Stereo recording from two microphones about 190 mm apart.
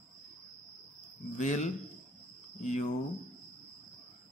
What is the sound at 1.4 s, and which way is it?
Speech, 40° left (ahead or behind).